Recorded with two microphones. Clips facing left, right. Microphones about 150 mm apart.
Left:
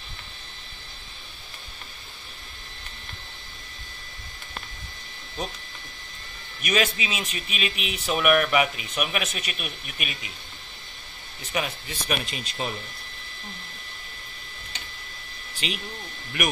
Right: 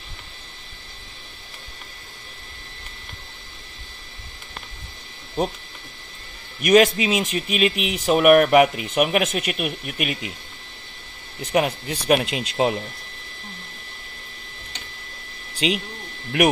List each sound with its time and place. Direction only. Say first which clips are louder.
5.4 s speech: right 9 dB; 60° right (ahead or behind)
6.6 s speech: right 10 dB; 60° right (ahead or behind)
8.1 s speech: right 8 dB; 55° right (ahead or behind)
11.5 s speech: right 9 dB; 70° right (ahead or behind); by 12.7 s 90° right
15.6 s speech: right 9 dB; 90° right